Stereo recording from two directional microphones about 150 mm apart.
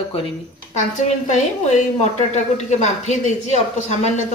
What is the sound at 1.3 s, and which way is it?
Speech, 55° left (ahead or behind).